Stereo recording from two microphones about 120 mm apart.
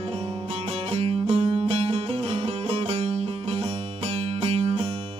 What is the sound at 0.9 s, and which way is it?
Music, 55° right (ahead or behind).